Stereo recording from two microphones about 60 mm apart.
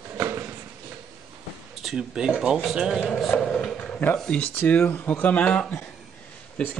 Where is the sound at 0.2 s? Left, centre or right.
Right.